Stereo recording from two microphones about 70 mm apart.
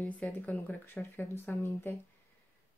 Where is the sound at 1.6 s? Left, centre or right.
Left.